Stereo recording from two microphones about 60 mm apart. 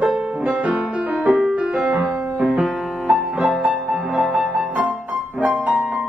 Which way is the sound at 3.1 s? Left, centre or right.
Centre.